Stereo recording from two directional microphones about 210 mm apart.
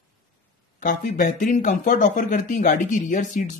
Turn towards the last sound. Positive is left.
turn(degrees=35)  # may be behind; listen again after turning